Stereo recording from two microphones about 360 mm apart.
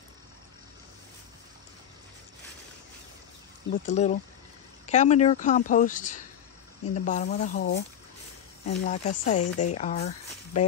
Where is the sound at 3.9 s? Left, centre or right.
Centre.